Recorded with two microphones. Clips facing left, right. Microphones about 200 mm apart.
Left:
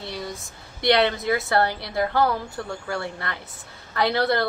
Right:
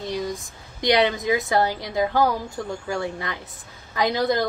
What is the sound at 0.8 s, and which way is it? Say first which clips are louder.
Speech: even; 15° right (ahead or behind).